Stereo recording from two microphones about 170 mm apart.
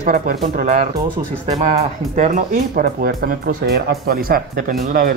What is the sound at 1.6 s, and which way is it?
Speech, 45° right (ahead or behind).